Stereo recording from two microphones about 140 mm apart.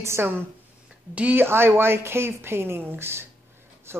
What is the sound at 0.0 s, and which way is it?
Speech, 20° right (ahead or behind).